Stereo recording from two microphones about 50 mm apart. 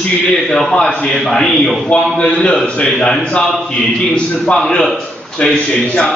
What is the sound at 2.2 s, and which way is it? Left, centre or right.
A man's voice, left.